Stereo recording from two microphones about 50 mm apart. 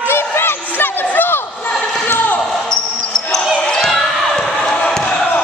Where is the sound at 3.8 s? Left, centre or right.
Centre.